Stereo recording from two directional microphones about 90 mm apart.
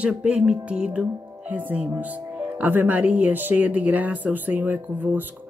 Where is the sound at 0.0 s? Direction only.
15° right (ahead or behind).